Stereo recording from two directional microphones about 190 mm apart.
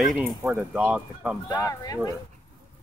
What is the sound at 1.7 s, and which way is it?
Speech, 20° left (ahead or behind).